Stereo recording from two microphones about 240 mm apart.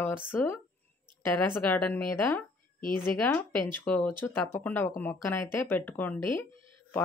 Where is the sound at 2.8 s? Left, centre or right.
Left.